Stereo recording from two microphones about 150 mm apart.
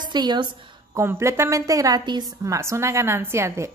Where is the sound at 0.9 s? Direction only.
20° right (ahead or behind).